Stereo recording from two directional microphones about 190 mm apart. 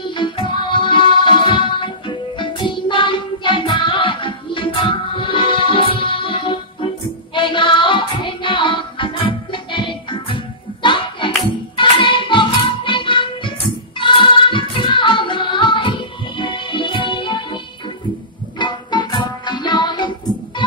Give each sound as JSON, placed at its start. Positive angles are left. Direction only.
{"t": 0.0, "sound": "music", "side_deg": 25}
{"t": 18.6, "sound": "music", "side_deg": 25}